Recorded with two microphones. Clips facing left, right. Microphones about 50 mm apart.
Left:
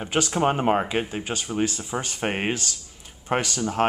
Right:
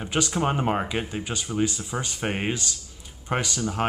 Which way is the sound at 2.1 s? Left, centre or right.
Left.